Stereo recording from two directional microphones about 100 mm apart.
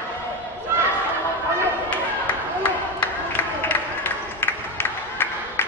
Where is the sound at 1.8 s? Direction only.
15° left (ahead or behind).